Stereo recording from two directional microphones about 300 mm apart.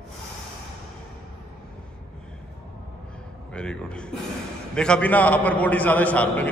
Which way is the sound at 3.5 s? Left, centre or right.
Centre.